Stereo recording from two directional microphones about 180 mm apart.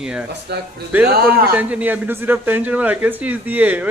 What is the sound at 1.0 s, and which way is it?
Speech, 60° right (ahead or behind).